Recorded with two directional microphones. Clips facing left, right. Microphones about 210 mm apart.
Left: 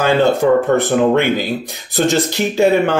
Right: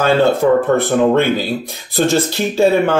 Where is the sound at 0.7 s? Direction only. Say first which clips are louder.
Even; 15° left (ahead or behind).